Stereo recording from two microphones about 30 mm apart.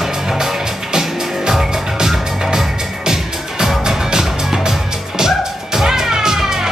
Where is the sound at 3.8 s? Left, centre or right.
Centre.